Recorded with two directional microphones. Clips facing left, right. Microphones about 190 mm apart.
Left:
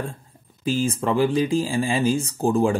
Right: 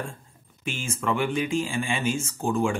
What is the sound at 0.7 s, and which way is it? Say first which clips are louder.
Speech: left 6 dB; 35° left (ahead or behind).